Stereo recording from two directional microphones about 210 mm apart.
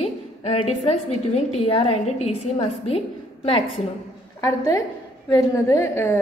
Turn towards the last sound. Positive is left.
turn(degrees=10)  # may be behind; listen again after turning